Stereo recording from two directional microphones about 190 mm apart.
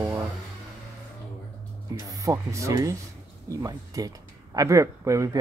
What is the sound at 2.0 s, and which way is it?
Speech, 20° right (ahead or behind).